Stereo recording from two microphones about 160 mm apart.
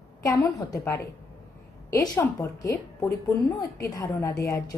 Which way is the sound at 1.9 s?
20° left (ahead or behind).